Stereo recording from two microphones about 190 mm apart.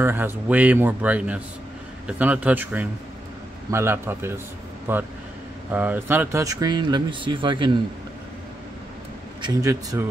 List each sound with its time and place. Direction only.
0.0 s speech: 10° right (ahead or behind)
9.4 s speech: 20° right (ahead or behind)